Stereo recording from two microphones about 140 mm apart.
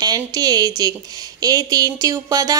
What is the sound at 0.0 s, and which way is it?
Speech, 30° right (ahead or behind).